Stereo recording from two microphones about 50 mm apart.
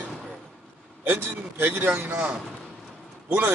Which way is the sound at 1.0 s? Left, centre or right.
Right.